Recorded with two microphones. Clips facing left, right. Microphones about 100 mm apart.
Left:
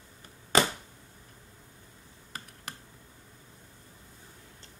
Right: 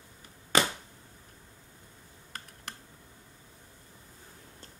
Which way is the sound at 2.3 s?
5° left (ahead or behind).